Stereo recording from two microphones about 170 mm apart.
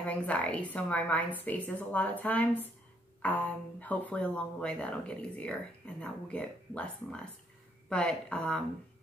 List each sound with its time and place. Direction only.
0.0 s a woman's voice: 10° left (ahead or behind)